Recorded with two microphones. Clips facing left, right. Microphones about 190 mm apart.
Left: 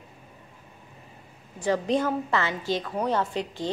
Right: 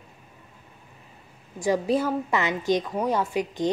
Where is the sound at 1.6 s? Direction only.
10° right (ahead or behind).